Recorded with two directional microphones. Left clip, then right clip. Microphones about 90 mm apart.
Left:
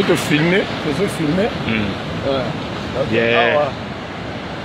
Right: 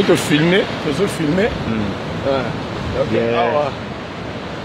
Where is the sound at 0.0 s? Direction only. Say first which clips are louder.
Right 1 dB; 85° right.